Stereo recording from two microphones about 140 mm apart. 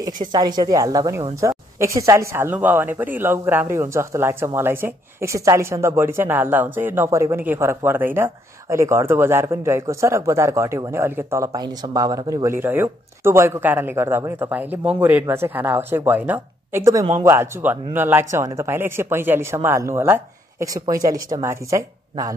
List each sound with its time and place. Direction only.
0.0 s a man's voice: 30° right (ahead or behind)